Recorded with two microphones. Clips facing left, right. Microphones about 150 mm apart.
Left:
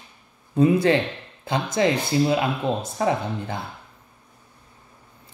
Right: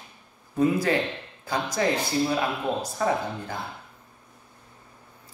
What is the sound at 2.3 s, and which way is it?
Speech, 20° left (ahead or behind).